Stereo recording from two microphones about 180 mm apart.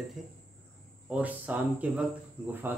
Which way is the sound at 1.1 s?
10° right (ahead or behind).